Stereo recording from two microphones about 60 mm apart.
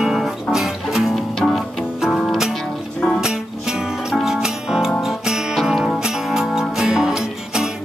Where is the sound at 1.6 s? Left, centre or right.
Centre.